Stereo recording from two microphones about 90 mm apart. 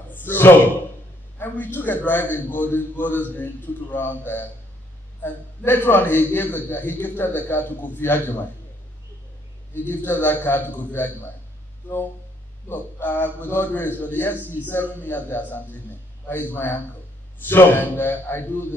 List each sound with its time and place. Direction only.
0.1 s a man's voice: 25° left (ahead or behind)
9.8 s a man's voice: 20° left (ahead or behind)
12.6 s a man's voice: 20° left (ahead or behind)